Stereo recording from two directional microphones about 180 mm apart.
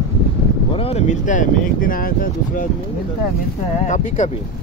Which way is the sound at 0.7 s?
35° left (ahead or behind).